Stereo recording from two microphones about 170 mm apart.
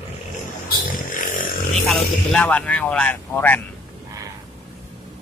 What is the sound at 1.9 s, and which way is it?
Speech, 5° left (ahead or behind).